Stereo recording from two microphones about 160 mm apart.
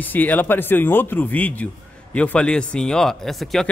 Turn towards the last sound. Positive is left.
turn(degrees=0)  # may be behind; listen again after turning